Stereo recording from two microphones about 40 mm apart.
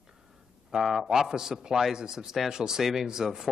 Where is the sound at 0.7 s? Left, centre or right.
Centre.